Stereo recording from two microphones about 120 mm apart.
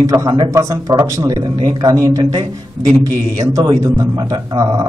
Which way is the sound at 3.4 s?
30° right (ahead or behind).